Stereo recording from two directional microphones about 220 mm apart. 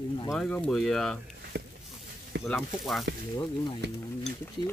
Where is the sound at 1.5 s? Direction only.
50° right (ahead or behind).